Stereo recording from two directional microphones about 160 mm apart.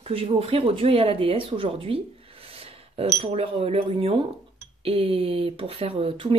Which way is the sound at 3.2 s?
40° right (ahead or behind).